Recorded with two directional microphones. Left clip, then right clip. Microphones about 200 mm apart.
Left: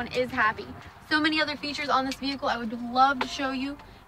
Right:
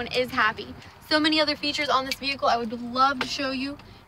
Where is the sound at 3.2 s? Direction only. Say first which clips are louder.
Right 1 dB; 45° right (ahead or behind).